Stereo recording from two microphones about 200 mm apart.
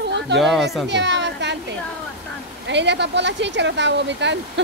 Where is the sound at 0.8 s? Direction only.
60° right (ahead or behind).